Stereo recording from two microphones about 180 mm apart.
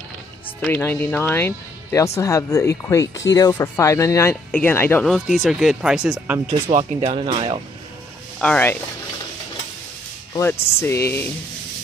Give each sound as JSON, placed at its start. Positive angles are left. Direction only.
{"t": 0.6, "sound": "speech", "side_deg": 10}
{"t": 6.7, "sound": "speech", "side_deg": -35}
{"t": 8.4, "sound": "speech", "side_deg": 10}
{"t": 10.3, "sound": "speech", "side_deg": 15}